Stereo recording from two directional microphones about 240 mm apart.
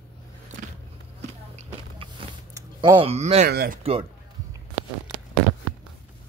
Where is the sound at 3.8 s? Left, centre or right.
Right.